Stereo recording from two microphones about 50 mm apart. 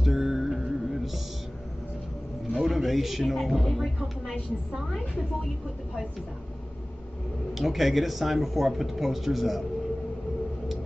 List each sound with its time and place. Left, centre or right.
0.0 s music: centre
2.6 s speech: centre
7.5 s speech: centre